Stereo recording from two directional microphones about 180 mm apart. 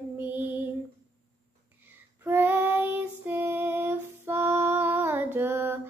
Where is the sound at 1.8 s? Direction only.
10° right (ahead or behind).